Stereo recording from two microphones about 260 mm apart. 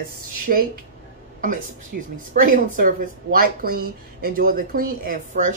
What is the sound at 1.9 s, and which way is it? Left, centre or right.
A woman's voice, right.